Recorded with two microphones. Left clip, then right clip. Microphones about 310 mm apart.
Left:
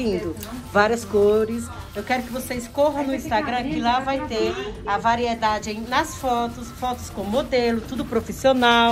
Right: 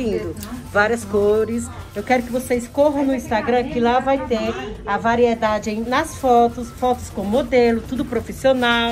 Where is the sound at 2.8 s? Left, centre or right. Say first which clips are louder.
Right 2 dB; centre.